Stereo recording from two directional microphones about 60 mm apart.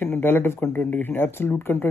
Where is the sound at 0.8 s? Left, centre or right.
Left.